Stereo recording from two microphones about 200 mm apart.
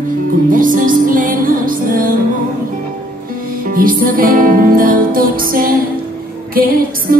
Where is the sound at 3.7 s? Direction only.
45° right (ahead or behind).